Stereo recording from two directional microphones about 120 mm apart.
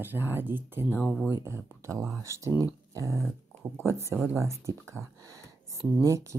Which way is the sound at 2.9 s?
25° right (ahead or behind).